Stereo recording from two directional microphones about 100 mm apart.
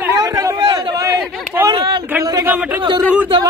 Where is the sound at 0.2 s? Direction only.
35° right (ahead or behind).